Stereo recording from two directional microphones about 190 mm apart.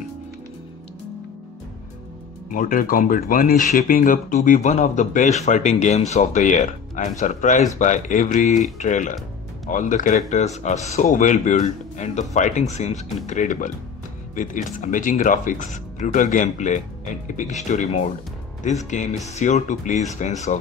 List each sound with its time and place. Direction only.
2.5 s speech: 45° left (ahead or behind)